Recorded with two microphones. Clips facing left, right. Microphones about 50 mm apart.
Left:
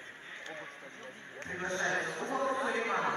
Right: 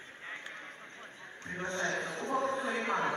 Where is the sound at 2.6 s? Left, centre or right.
Centre.